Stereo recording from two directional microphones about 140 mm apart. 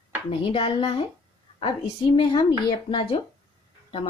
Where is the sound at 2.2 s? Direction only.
35° left (ahead or behind).